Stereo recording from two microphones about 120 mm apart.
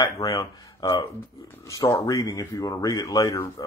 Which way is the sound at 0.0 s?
30° left (ahead or behind).